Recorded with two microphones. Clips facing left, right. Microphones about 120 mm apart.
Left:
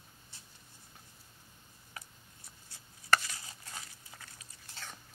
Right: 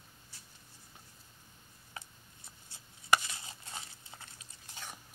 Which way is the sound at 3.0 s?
15° right (ahead or behind).